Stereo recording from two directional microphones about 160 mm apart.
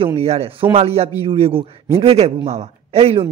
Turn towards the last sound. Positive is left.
turn(degrees=-40)  # may be behind; listen again after turning